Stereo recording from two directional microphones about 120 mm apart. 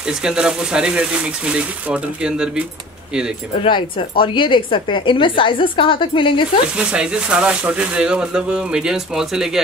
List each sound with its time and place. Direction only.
0.2 s speech: 5° right (ahead or behind)
3.6 s a woman's voice: 40° left (ahead or behind)
6.8 s speech: 10° right (ahead or behind)